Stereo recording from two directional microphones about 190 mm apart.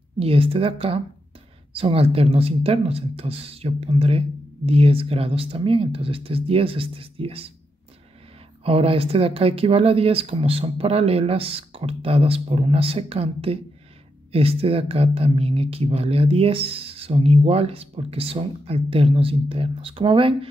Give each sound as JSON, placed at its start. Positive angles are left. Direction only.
{"t": 0.2, "sound": "speech", "side_deg": -30}
{"t": 8.6, "sound": "speech", "side_deg": -30}